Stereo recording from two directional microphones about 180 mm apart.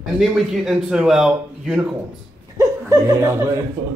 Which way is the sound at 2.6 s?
15° right (ahead or behind).